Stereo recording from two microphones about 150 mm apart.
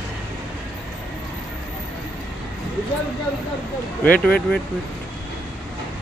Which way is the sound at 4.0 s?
10° left (ahead or behind).